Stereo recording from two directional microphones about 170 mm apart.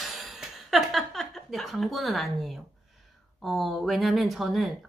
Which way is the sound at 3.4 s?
Centre (ahead or behind).